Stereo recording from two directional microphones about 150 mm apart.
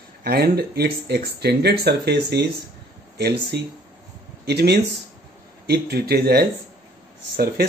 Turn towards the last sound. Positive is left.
turn(degrees=-90)